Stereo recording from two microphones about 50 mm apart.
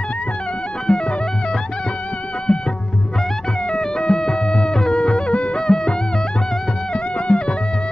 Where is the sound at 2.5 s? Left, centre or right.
Centre.